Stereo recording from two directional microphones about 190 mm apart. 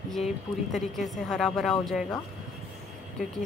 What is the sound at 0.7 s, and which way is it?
Speech, centre (ahead or behind).